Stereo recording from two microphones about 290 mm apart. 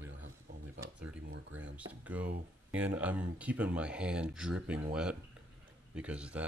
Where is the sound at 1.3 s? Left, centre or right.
Right.